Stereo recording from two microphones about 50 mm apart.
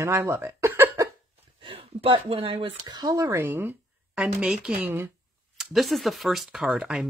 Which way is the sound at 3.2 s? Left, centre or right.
Right.